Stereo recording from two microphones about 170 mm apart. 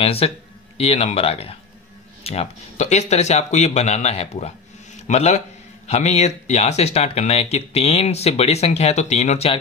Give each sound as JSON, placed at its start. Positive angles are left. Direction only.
{"t": 0.0, "sound": "speech", "side_deg": 35}